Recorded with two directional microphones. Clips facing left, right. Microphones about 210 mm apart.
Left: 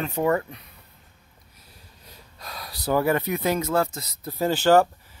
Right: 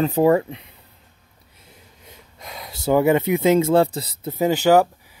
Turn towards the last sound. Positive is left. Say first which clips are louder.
# right 3 dB
turn(degrees=-10)  # may be behind; listen again after turning